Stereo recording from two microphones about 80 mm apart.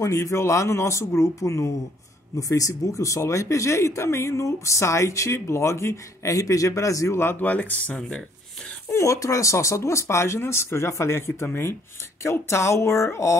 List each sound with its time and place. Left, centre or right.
0.0 s speech: left; by 8.2 s centre
8.9 s speech: left